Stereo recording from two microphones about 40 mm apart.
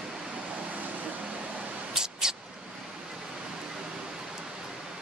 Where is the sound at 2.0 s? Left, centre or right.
Centre.